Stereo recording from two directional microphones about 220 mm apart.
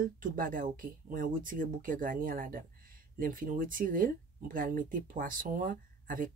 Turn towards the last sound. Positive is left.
turn(degrees=-40)  # may be behind; listen again after turning